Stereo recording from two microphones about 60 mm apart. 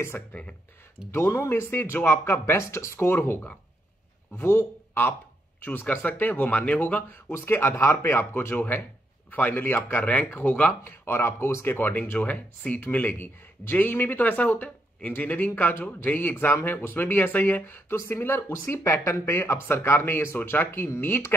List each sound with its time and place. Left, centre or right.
0.3 s speech: left
1.1 s speech: left
5.6 s speech: left
10.0 s speech: left
10.8 s speech: left